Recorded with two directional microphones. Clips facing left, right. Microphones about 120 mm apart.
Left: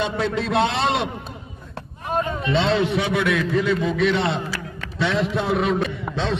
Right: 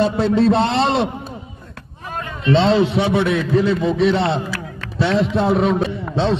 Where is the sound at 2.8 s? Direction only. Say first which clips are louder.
Right 4 dB; 30° right (ahead or behind).